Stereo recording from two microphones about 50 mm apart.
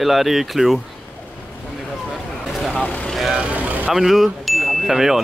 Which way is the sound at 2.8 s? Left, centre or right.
Left.